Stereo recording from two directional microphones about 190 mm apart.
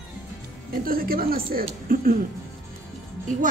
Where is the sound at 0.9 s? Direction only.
50° right (ahead or behind).